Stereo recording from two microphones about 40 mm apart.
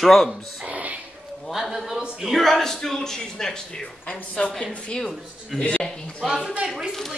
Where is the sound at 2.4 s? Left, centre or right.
Centre.